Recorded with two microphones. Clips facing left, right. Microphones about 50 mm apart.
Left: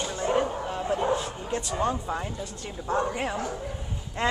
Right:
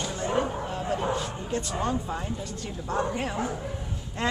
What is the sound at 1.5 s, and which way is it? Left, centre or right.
Speech, centre.